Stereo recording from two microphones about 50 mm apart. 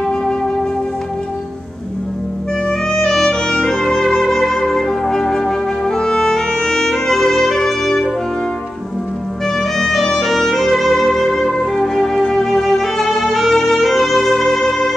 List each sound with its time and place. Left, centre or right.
0.0 s music: centre
2.9 s music: centre
9.6 s music: centre